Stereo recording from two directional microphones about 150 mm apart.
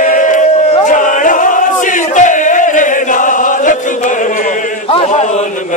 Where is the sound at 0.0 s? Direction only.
60° left (ahead or behind).